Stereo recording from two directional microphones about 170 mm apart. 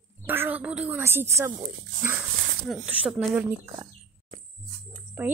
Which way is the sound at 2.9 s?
10° right (ahead or behind).